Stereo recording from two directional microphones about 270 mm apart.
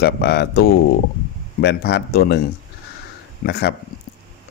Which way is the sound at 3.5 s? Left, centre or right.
Left.